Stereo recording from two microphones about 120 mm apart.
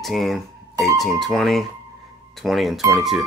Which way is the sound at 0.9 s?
Centre (ahead or behind).